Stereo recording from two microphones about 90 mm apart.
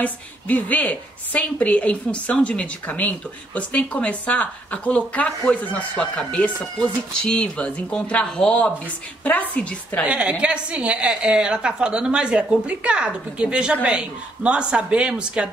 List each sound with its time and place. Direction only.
0.0 s a woman's voice: 15° left (ahead or behind)
9.2 s a woman's voice: 15° left (ahead or behind)
10.0 s a woman's voice: 15° right (ahead or behind)